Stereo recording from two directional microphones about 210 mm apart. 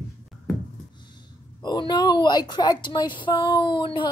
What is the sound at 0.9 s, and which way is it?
Speech, 20° left (ahead or behind).